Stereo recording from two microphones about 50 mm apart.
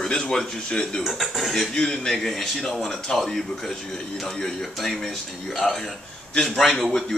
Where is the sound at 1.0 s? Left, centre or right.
Centre.